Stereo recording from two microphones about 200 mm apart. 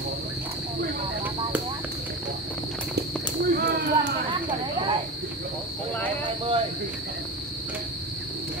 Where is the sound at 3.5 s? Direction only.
55° right (ahead or behind).